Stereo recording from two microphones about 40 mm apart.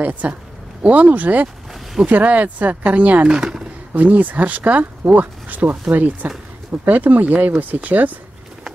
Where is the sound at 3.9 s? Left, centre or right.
Right.